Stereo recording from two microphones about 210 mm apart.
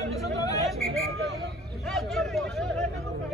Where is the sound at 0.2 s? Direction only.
15° left (ahead or behind).